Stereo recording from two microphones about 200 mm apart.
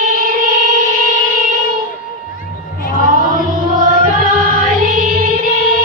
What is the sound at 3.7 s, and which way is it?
Music, 40° right (ahead or behind).